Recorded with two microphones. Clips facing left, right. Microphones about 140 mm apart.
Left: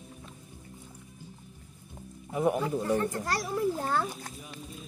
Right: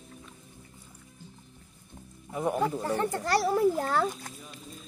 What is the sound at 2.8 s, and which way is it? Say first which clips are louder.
A child's voice: even; 85° right.